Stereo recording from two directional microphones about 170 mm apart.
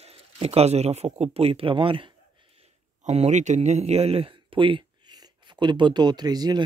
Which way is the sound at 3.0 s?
45° right (ahead or behind).